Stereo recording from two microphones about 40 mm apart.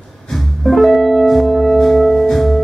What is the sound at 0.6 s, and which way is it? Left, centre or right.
Music, centre.